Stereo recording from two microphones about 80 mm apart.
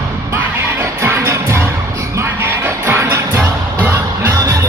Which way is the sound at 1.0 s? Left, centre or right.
Right.